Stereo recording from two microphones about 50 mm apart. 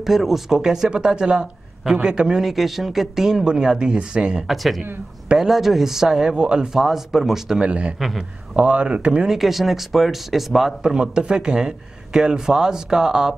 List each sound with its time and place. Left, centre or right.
0.0 s speech: centre
2.4 s speech: centre
4.5 s speech: centre
6.8 s speech: centre
7.6 s speech: right
8.0 s speech: centre
8.5 s speech: right
9.3 s speech: centre
11.0 s speech: centre